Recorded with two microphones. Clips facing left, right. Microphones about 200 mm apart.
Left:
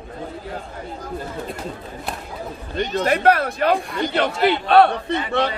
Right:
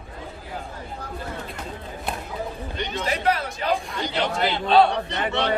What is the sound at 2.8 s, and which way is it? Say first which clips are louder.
A man's voice: left 8 dB; 55° left (ahead or behind).